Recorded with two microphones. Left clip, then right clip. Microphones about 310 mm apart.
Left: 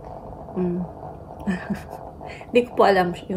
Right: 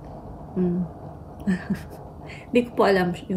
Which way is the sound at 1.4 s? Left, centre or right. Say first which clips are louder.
Even; centre.